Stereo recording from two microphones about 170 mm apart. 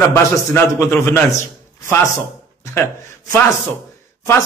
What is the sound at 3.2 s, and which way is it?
Speech, 15° left (ahead or behind).